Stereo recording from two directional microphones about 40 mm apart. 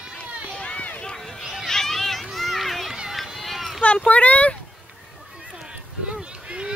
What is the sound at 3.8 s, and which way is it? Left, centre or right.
Speech, left.